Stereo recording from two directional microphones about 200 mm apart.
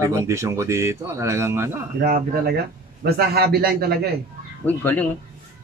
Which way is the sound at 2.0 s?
50° right (ahead or behind).